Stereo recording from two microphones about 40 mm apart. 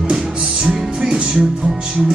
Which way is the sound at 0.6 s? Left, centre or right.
Right.